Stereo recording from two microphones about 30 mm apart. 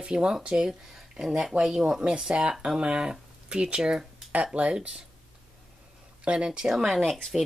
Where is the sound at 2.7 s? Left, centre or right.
Right.